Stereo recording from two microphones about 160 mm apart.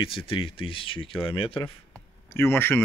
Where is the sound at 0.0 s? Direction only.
35° left (ahead or behind).